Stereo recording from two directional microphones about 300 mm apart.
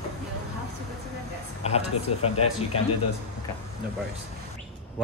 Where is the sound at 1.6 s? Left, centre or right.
Left.